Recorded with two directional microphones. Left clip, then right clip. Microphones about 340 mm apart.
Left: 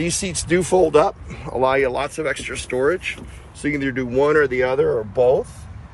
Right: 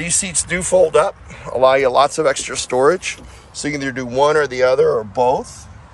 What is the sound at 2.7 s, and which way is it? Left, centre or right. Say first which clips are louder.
Speech: right 6 dB; right.